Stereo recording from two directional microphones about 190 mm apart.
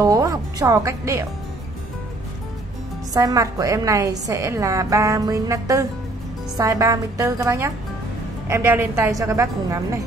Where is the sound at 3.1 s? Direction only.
20° right (ahead or behind).